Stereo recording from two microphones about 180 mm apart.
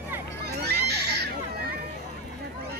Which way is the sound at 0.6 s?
65° right (ahead or behind).